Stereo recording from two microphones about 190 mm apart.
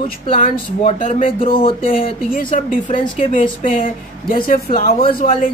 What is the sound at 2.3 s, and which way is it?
Speech, 45° left (ahead or behind).